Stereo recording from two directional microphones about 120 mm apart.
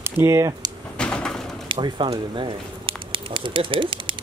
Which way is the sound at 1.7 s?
45° right (ahead or behind).